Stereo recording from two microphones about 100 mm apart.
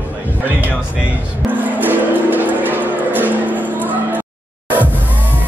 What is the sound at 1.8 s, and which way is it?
Music, 20° right (ahead or behind).